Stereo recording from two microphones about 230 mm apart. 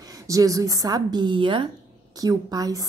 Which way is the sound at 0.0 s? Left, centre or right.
Centre.